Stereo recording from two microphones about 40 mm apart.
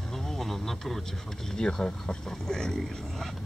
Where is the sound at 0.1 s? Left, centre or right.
Centre.